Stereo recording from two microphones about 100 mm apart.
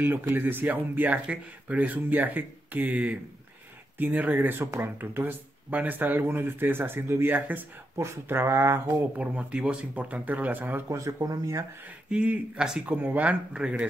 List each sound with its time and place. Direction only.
0.0 s speech: 20° right (ahead or behind)
10.9 s speech: 30° right (ahead or behind)
12.1 s speech: 10° right (ahead or behind)